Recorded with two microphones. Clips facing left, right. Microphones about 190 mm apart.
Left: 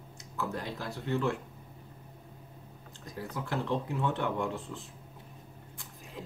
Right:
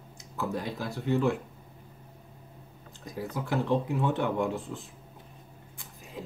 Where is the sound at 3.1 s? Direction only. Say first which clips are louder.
Right 4 dB; 10° right (ahead or behind).